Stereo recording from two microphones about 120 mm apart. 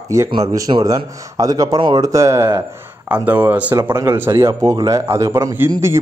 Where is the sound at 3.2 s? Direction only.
15° right (ahead or behind).